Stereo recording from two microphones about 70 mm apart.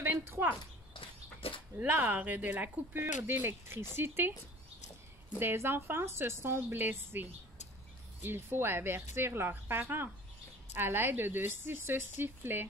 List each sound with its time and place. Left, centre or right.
0.0 s a sound: right
1.8 s speech: right
5.4 s speech: right